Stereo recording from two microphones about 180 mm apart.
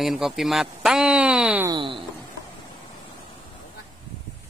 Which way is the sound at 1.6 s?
25° right (ahead or behind).